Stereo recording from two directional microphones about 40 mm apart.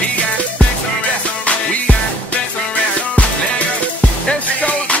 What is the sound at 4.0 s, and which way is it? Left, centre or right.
Music, left.